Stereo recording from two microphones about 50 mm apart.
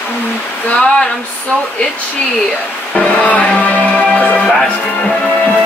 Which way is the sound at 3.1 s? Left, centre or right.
Left.